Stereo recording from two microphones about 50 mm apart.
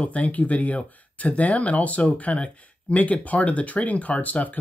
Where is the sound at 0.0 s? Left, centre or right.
Left.